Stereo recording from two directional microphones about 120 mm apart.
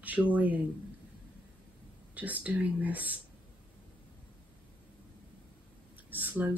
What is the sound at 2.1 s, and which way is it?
Speech, 15° right (ahead or behind).